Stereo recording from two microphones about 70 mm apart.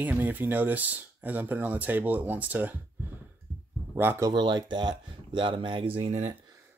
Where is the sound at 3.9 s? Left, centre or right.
Right.